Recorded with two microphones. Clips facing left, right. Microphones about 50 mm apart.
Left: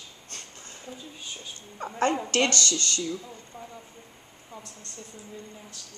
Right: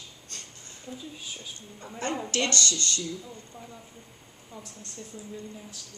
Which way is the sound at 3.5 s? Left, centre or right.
Left.